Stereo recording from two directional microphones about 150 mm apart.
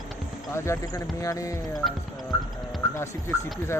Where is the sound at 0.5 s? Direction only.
20° left (ahead or behind).